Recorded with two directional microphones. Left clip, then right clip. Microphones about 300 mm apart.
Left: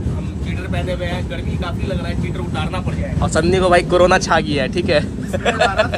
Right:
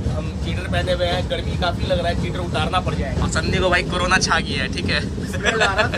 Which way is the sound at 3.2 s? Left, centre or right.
Centre.